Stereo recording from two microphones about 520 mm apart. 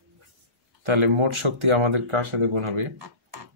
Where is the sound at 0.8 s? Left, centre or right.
Right.